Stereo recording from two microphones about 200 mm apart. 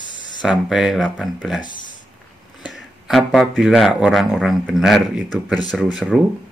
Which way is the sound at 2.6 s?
Centre (ahead or behind).